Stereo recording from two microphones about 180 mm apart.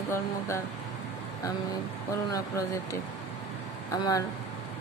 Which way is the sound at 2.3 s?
20° left (ahead or behind).